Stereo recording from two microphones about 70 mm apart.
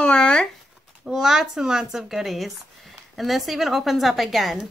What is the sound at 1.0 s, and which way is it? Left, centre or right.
Speech, centre.